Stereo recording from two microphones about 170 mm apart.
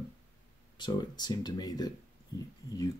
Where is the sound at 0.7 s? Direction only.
25° left (ahead or behind).